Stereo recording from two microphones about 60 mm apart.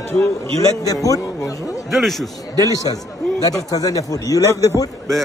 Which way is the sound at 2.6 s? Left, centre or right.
Left.